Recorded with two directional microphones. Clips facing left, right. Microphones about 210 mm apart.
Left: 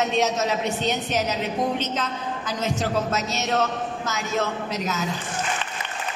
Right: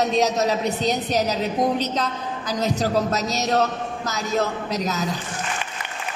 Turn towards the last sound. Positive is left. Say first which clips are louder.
# right 2 dB
turn(degrees=-35)  # may be behind; listen again after turning